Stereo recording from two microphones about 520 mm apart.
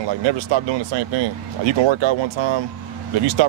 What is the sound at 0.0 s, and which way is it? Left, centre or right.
Speech, right.